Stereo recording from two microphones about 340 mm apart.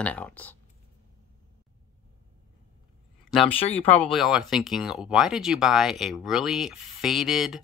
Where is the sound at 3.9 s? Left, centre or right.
Centre.